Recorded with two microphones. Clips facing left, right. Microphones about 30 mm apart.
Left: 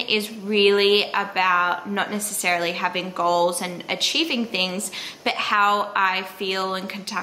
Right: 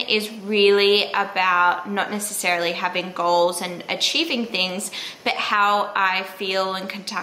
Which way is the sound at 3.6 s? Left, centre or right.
Centre.